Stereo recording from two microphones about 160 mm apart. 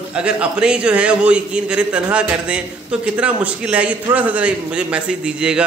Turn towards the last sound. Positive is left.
turn(degrees=-5)  # may be behind; listen again after turning